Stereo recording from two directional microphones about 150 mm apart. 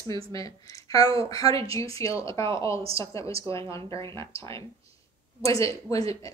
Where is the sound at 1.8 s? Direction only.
40° right (ahead or behind).